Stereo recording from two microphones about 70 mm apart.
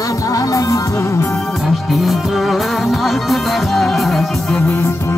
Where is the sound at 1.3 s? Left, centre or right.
Centre.